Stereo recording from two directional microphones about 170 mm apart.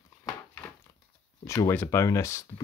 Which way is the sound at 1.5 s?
15° left (ahead or behind).